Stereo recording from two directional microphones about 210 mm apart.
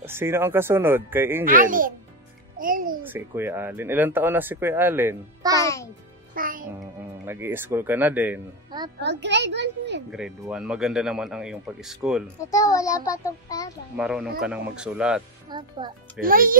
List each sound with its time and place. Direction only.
0.0 s speech: 10° right (ahead or behind)
1.4 s a child's voice: 40° right (ahead or behind)
3.0 s speech: 10° right (ahead or behind)
5.6 s a child's voice: 15° left (ahead or behind)
6.3 s music: 40° right (ahead or behind)
7.2 s speech: 10° right (ahead or behind)
9.0 s a child's voice: 55° right (ahead or behind)
10.1 s speech: 5° right (ahead or behind)
12.4 s a child's voice: 15° left (ahead or behind)
13.9 s speech: 5° right (ahead or behind)
15.5 s a child's voice: 20° right (ahead or behind)
16.2 s a child's voice: 40° right (ahead or behind)